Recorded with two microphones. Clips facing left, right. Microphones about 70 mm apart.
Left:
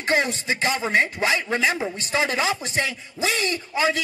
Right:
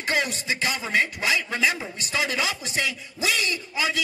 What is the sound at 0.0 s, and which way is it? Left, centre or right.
A man's voice, left.